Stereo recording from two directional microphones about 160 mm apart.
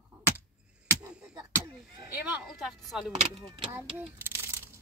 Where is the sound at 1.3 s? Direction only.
20° right (ahead or behind); by 3.0 s centre (ahead or behind).